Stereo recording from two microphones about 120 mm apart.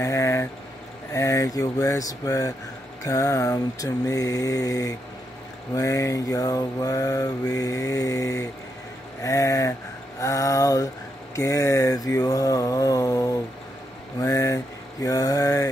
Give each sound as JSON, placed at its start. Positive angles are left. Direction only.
{"t": 0.0, "sound": "mantra", "side_deg": 25}